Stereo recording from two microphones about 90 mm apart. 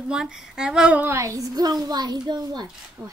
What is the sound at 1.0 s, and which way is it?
A woman's voice, 35° right (ahead or behind).